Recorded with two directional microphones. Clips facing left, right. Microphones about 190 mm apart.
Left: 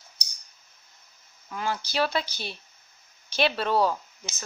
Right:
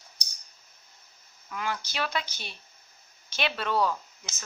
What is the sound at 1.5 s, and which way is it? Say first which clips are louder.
A woman's voice: left 3 dB; 30° left (ahead or behind).